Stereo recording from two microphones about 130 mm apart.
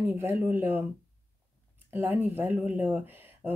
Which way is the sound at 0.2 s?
15° right (ahead or behind).